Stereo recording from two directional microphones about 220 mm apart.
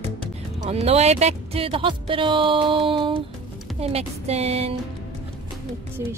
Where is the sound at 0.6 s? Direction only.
30° right (ahead or behind).